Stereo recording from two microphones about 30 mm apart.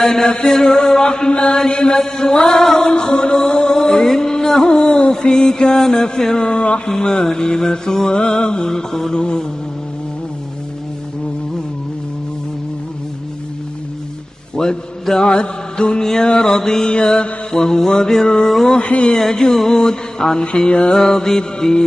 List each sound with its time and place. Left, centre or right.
0.0 s music: left
6.4 s music: left
7.0 s music: left
14.5 s a man's voice: left
15.2 s music: left
16.0 s music: left
16.9 s music: left
18.7 s music: left
19.1 s music: left
21.0 s music: left